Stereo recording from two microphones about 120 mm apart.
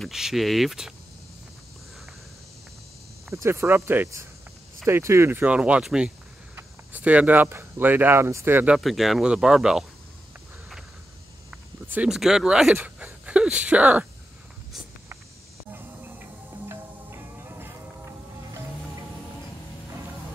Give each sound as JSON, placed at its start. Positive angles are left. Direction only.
{"t": 0.0, "sound": "speech", "side_deg": -5}
{"t": 3.3, "sound": "speech", "side_deg": -20}
{"t": 8.7, "sound": "speech", "side_deg": 0}
{"t": 11.9, "sound": "speech", "side_deg": -5}
{"t": 15.7, "sound": "music", "side_deg": -20}